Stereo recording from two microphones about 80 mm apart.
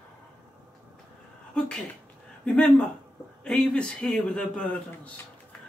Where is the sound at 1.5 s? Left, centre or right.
Centre.